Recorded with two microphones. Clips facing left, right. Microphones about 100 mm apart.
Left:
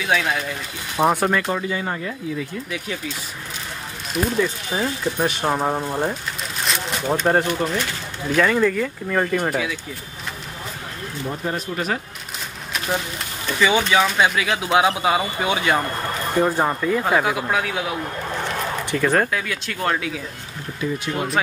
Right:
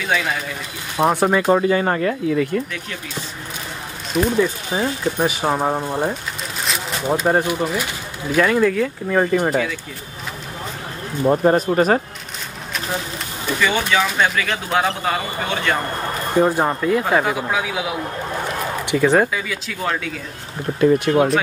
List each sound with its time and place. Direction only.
0.0 s speech: centre (ahead or behind)
1.7 s speech: 65° right (ahead or behind)
4.4 s speech: 10° right (ahead or behind)
11.2 s speech: 45° right (ahead or behind)
13.6 s speech: 5° left (ahead or behind)
16.3 s speech: 10° right (ahead or behind)
18.9 s speech: 15° right (ahead or behind)
20.8 s speech: 70° right (ahead or behind)